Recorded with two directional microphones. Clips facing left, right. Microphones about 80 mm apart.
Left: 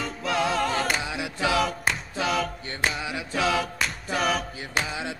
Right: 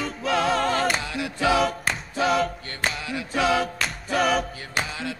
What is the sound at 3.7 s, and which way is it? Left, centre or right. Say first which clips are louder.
A capella: right 3 dB; centre.